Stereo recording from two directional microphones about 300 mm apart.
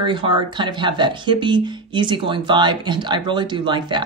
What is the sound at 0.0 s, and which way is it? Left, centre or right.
Speech, centre.